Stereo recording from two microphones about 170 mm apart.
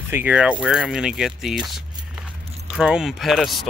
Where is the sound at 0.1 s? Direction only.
10° right (ahead or behind).